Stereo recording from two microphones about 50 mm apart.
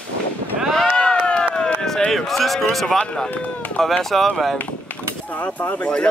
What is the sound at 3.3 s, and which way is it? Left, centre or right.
Run, left.